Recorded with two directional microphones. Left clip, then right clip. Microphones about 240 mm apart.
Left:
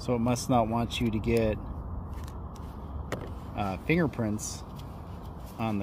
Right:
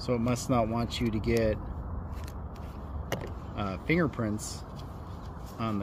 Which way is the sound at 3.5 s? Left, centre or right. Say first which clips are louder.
Left 1 dB; left.